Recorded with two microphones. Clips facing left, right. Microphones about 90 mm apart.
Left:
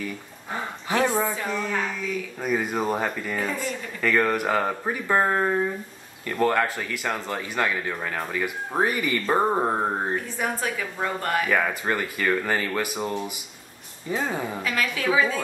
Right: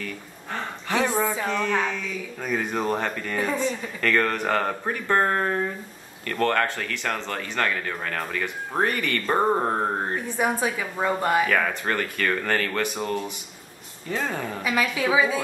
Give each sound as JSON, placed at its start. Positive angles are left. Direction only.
{"t": 0.0, "sound": "speech", "side_deg": 10}
{"t": 10.2, "sound": "a woman's voice", "side_deg": -15}
{"t": 11.4, "sound": "speech", "side_deg": 10}
{"t": 14.6, "sound": "a woman's voice", "side_deg": -15}